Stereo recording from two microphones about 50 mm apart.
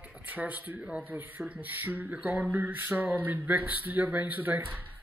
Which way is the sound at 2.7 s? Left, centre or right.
Right.